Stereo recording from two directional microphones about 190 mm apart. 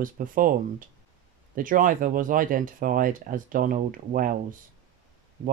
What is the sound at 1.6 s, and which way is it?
Speech, 45° right (ahead or behind).